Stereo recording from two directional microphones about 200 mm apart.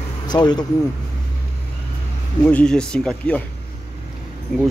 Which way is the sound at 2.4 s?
5° left (ahead or behind).